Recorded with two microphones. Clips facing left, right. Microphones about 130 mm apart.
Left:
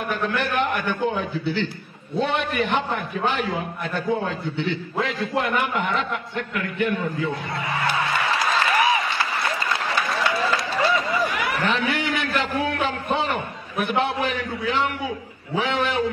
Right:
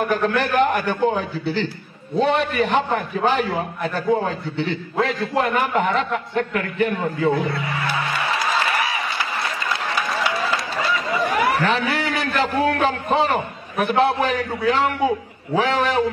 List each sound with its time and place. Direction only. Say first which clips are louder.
0.0 s a man's voice: right 5 dB; 40° right (ahead or behind)
9.9 s a sound: even; centre (ahead or behind)
11.2 s a man's voice: right 5 dB; 40° right (ahead or behind)